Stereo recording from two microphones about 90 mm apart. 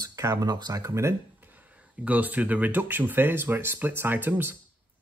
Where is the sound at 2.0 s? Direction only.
15° right (ahead or behind).